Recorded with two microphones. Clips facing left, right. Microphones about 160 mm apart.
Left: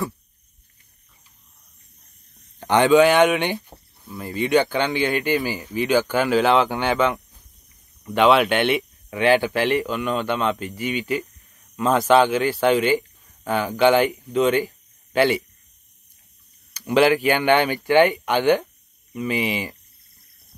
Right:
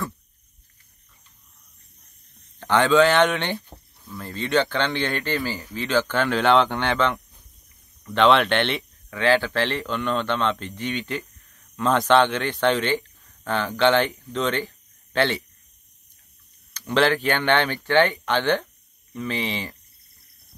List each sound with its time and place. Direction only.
2.6 s speech: 15° left (ahead or behind)
16.7 s speech: 10° left (ahead or behind)